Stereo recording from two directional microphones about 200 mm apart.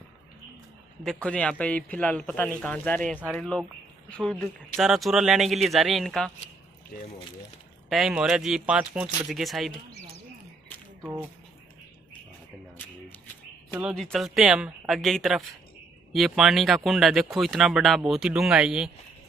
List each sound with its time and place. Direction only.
1.0 s a man's voice: 5° left (ahead or behind)
7.9 s speech: 5° right (ahead or behind)
13.7 s speech: centre (ahead or behind)